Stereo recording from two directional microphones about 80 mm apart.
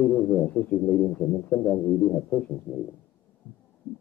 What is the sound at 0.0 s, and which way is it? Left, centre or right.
Speech, centre.